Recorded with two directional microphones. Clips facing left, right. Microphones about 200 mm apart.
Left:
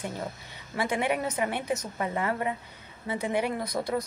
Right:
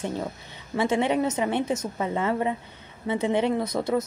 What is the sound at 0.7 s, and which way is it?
A woman's voice, 25° right (ahead or behind).